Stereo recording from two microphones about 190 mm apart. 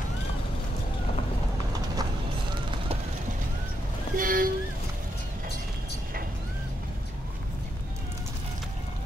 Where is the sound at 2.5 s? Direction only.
25° right (ahead or behind).